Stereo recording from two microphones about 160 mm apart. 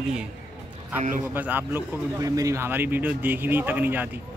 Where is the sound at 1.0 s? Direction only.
50° right (ahead or behind).